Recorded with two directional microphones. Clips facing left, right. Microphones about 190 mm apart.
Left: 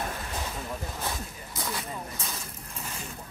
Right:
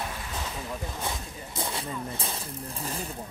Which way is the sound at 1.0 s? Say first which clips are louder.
Even; 30° right (ahead or behind).